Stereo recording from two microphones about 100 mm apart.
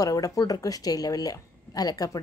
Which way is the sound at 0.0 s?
35° left (ahead or behind).